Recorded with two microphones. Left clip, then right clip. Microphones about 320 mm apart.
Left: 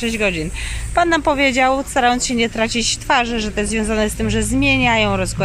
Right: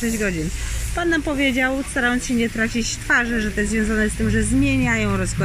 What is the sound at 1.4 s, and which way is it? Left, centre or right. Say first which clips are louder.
Speech: left 5 dB; centre.